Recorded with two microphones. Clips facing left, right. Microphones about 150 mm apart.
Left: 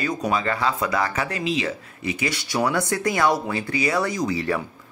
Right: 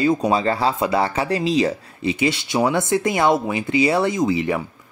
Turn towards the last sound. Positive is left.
turn(degrees=-20)  # may be behind; listen again after turning